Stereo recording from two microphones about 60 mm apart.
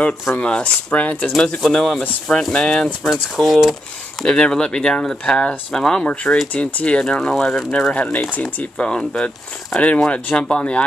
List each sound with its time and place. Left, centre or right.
0.4 s speech: centre
1.3 s speech: centre
3.0 s speech: centre
7.9 s speech: left